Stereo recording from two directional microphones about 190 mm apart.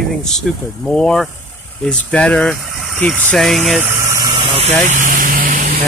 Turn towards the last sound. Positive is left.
turn(degrees=-45)  # may be behind; listen again after turning